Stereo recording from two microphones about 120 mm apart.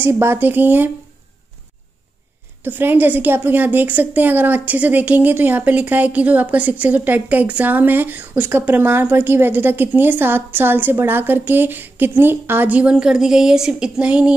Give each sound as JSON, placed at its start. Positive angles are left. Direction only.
{"t": 0.0, "sound": "a woman's voice", "side_deg": -20}
{"t": 2.6, "sound": "a woman's voice", "side_deg": -15}